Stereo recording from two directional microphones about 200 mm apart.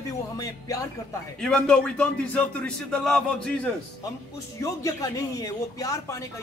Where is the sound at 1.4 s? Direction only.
5° left (ahead or behind).